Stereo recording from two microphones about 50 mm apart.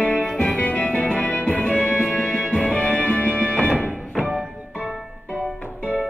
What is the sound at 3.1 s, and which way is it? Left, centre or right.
Music, right.